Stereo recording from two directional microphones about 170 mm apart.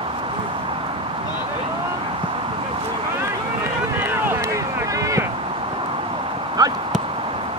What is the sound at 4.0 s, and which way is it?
Boat, 10° right (ahead or behind).